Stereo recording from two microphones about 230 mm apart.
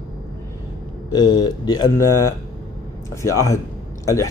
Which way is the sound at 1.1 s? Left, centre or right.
Centre.